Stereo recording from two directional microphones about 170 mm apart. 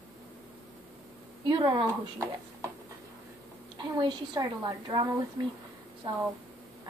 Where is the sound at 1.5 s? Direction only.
30° right (ahead or behind).